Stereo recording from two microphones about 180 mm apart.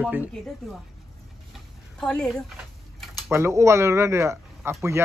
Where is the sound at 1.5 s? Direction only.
5° left (ahead or behind).